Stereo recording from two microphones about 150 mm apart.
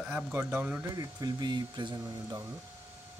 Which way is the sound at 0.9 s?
25° right (ahead or behind).